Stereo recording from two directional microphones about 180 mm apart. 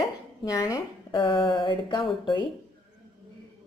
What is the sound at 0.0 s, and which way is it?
Speech, 20° left (ahead or behind).